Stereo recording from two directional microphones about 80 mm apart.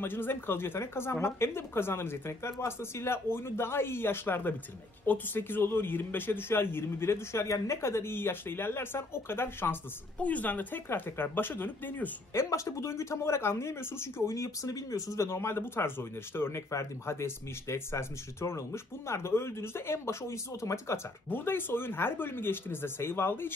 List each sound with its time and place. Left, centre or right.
0.0 s speech: left
12.4 s speech: left
21.3 s speech: left